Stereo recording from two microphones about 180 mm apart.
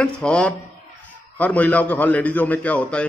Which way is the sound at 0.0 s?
5° left (ahead or behind).